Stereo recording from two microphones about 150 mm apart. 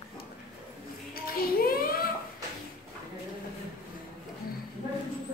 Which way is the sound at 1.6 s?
80° left.